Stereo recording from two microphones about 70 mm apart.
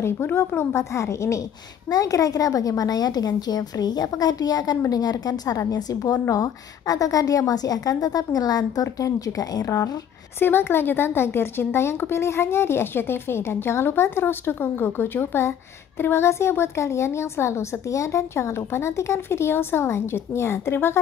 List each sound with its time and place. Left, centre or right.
0.0 s a woman's voice: left
1.9 s a woman's voice: left
6.2 s a woman's voice: left
10.4 s a woman's voice: left